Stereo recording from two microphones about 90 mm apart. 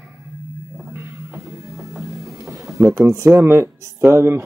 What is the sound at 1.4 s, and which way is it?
Music, centre (ahead or behind).